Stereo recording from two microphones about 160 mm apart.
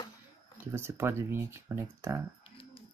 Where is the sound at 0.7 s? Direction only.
15° right (ahead or behind).